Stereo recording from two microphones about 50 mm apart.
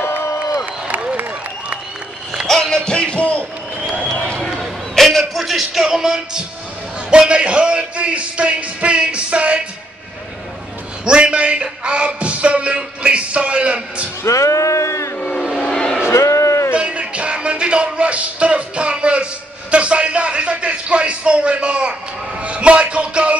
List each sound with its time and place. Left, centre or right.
0.0 s crowd: left
0.8 s applause: right
2.4 s music: centre; by 3.4 s left
4.4 s a sound: centre
5.3 s speech: centre; by 9.6 s right
11.1 s speech: centre
14.2 s speech: left
15.1 s vehicle: left
15.6 s a sound: centre
16.1 s a sound: left
16.7 s music: right
19.7 s a sound: right
22.4 s speech: right